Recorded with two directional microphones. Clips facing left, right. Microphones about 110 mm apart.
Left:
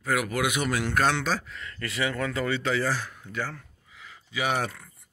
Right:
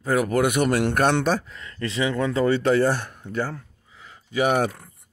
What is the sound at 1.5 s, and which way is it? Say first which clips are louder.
Speech: right 5 dB; 30° right (ahead or behind).